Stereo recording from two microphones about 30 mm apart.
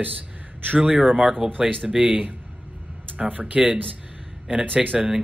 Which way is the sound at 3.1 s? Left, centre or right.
Right.